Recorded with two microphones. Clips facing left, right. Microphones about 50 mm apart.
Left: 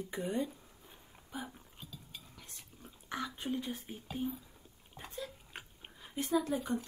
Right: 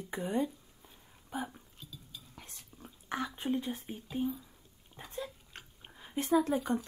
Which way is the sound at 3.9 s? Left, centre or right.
Centre.